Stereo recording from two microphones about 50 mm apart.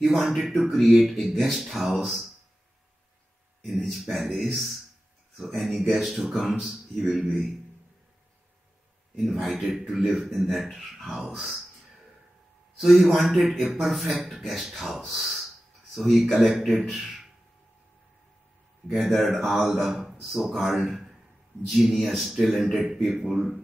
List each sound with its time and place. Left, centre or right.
0.0 s speech: centre
3.7 s speech: centre
5.4 s speech: centre
9.1 s speech: centre
12.8 s speech: centre
18.9 s speech: centre
19.3 s speech: centre